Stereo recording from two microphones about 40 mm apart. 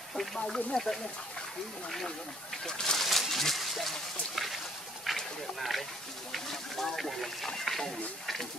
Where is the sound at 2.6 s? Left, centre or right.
Centre.